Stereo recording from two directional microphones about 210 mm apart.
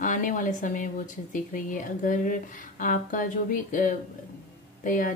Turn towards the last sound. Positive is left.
turn(degrees=40)  # may be behind; listen again after turning